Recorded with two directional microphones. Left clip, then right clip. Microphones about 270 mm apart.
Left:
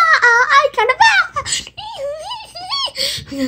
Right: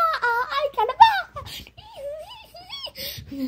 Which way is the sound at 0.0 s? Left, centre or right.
Centre.